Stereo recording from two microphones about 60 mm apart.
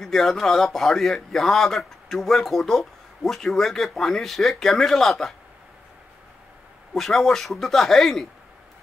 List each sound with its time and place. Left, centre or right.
0.0 s a man's voice: centre
6.9 s a man's voice: centre